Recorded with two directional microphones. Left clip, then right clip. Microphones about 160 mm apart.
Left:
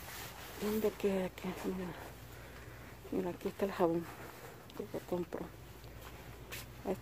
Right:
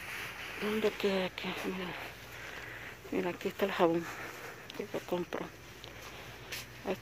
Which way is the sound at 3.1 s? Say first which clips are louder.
Right 3 dB; 5° right (ahead or behind).